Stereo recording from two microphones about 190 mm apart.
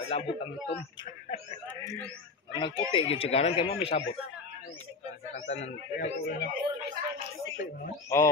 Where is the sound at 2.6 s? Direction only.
25° left (ahead or behind).